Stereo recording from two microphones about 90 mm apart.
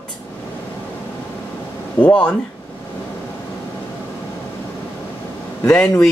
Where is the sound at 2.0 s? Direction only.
15° left (ahead or behind).